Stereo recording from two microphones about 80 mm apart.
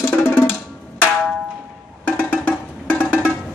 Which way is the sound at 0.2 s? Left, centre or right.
Left.